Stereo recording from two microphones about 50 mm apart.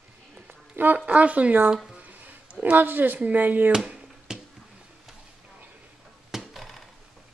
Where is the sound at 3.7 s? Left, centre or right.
Centre.